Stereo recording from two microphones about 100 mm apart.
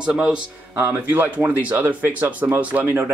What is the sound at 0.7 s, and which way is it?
Speech, 20° right (ahead or behind).